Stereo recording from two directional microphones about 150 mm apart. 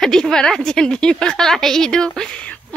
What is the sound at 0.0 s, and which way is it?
A woman's voice, 5° left (ahead or behind).